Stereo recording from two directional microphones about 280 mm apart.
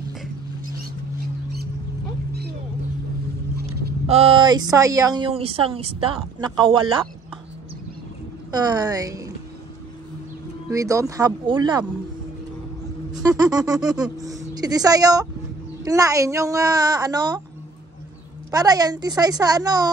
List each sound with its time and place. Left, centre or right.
4.1 s speech: centre
8.5 s a woman's voice: centre
10.7 s speech: centre
13.1 s speech: centre
18.5 s speech: centre